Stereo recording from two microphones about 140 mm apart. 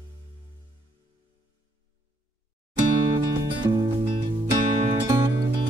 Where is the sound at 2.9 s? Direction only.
35° right (ahead or behind).